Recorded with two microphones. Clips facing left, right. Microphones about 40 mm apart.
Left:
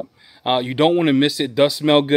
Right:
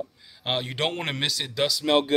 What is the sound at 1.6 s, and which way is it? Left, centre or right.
Speech, left.